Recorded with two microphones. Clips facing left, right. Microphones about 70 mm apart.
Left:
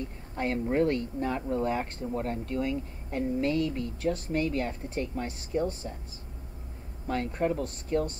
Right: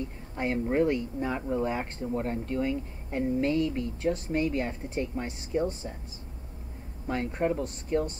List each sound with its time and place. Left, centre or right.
0.4 s speech: centre
7.1 s speech: right